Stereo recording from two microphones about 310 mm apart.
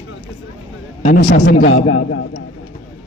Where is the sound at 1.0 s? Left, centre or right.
Left.